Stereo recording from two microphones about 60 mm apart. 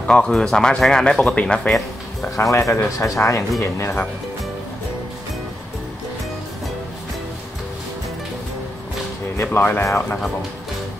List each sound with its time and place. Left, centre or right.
0.0 s speech: centre
2.3 s speech: left
9.4 s speech: left